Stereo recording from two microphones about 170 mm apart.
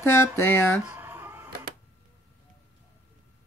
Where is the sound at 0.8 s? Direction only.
10° right (ahead or behind).